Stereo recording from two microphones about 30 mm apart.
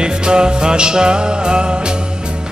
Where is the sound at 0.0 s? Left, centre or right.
Right.